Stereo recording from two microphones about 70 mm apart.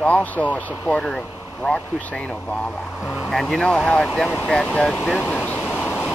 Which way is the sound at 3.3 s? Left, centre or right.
Centre.